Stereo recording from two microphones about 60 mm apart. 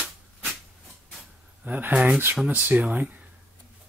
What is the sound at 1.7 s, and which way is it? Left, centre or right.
Speech, right.